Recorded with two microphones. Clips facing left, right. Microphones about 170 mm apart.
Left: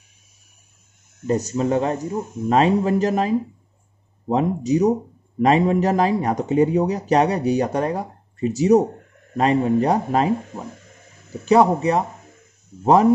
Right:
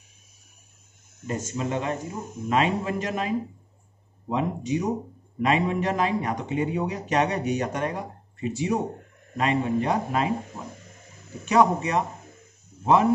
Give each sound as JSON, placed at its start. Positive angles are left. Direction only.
{"t": 1.2, "sound": "speech", "side_deg": 40}
{"t": 11.4, "sound": "speech", "side_deg": 30}